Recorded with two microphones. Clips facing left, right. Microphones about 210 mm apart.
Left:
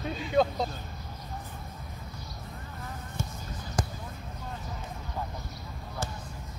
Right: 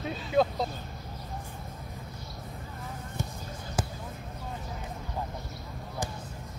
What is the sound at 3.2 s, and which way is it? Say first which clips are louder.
Basketball bounce: right 1 dB; 15° right (ahead or behind).